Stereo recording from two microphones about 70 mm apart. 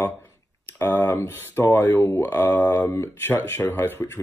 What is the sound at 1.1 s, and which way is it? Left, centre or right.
Speech, left.